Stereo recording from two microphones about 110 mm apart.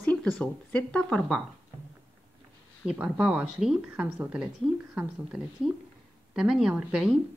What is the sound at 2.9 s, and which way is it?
Speech, 15° right (ahead or behind).